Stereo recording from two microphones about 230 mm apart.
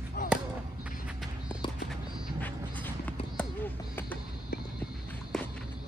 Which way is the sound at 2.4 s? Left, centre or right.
Centre.